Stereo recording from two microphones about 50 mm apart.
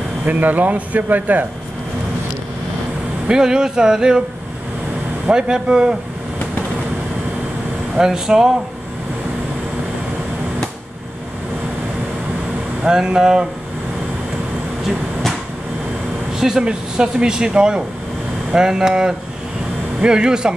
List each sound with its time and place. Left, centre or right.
0.3 s speech: right
3.3 s speech: centre
5.3 s speech: centre
7.9 s speech: centre
12.8 s speech: centre
16.3 s speech: centre